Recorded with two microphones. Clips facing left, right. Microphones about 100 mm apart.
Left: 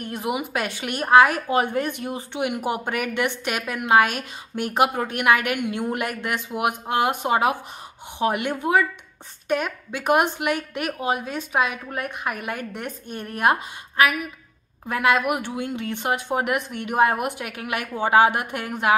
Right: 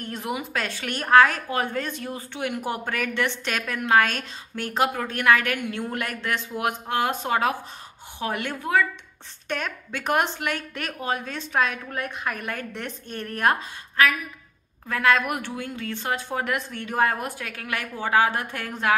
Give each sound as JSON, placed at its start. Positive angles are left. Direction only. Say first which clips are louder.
{"t": 0.0, "sound": "a woman's voice", "louder": "left 3 dB", "side_deg": 15}